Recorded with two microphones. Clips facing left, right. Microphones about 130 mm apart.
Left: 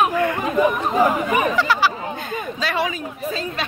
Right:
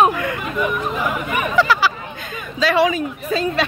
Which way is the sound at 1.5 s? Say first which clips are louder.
Right 2 dB; 90° right.